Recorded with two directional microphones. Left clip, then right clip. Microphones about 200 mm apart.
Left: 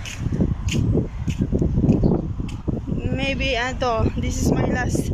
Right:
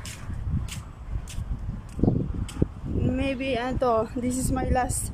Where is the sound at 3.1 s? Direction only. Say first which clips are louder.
Left 6 dB; 10° right (ahead or behind).